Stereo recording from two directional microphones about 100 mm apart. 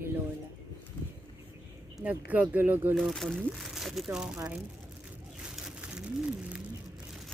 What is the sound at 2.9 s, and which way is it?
Speech, centre (ahead or behind).